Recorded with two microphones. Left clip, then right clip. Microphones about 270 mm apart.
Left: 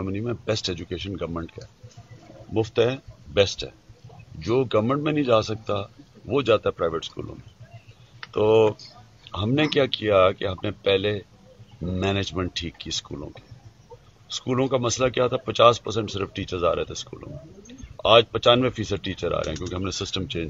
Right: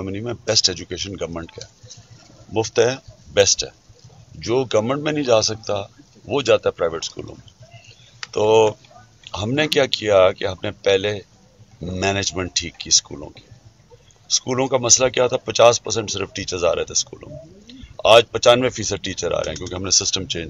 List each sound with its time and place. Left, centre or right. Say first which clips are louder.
0.0 s speech: right 3 dB; right
14.4 s speech: right 1 dB; right